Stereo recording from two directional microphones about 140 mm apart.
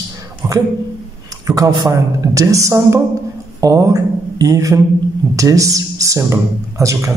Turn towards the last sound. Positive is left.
turn(degrees=-20)  # may be behind; listen again after turning